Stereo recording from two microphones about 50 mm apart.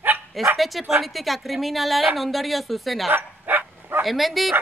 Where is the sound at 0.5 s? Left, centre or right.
Centre.